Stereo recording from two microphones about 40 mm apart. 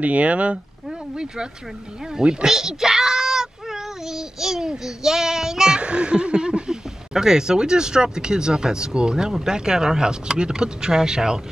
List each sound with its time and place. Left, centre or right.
0.0 s speech: right
1.1 s speech: right
2.4 s speech: centre
5.8 s speech: right